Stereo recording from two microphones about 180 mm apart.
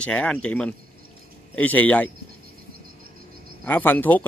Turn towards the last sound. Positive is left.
turn(degrees=10)  # may be behind; listen again after turning